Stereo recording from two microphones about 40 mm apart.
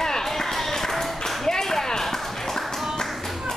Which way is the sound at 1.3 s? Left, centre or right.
Centre.